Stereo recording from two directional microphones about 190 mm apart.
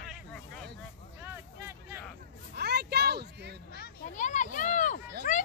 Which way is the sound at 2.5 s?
60° right (ahead or behind).